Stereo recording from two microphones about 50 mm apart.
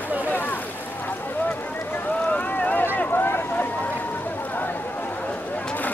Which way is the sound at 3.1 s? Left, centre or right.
Left.